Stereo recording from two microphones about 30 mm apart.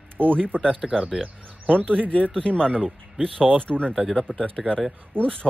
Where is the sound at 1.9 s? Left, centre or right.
Left.